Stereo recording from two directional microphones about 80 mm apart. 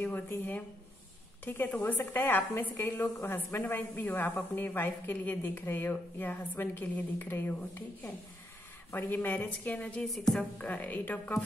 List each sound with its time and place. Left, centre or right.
0.0 s a woman's voice: left
8.9 s a woman's voice: left
10.0 s a woman's voice: centre
10.6 s a woman's voice: centre